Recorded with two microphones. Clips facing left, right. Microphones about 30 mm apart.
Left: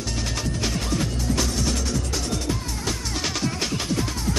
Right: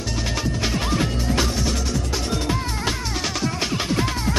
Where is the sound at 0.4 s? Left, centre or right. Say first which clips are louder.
Right 4 dB; right.